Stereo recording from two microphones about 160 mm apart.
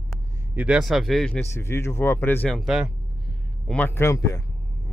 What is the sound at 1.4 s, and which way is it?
Speech, 15° left (ahead or behind).